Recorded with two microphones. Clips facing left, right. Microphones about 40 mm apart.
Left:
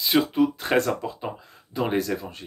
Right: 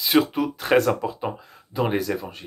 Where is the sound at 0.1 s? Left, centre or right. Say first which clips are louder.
Right 1 dB; right.